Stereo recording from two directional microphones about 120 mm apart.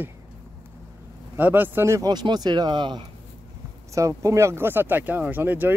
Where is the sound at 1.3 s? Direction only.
15° right (ahead or behind).